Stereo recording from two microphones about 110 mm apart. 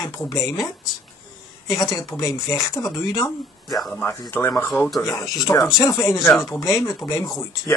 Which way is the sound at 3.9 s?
15° left (ahead or behind).